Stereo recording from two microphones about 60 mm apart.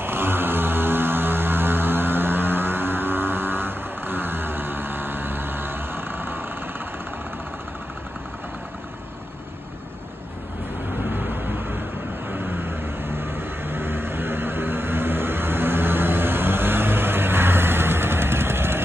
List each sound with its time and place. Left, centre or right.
0.0 s music: right
11.1 s vehicle: right